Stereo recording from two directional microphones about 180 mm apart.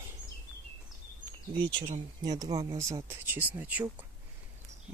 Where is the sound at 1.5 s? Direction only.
25° right (ahead or behind); by 3.8 s 10° right (ahead or behind).